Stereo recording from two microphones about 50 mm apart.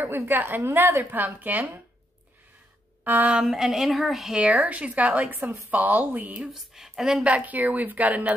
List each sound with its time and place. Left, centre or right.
0.1 s a woman's voice: right
0.7 s a woman's voice: right
1.1 s speech: right
3.0 s speech: right
3.4 s a woman's voice: centre
4.4 s speech: right
6.5 s a woman's voice: centre
7.2 s speech: right